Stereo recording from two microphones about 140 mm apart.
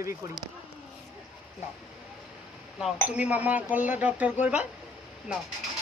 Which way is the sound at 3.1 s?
10° right (ahead or behind).